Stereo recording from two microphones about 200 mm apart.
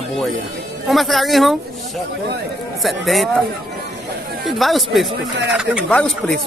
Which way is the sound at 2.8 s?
Centre (ahead or behind).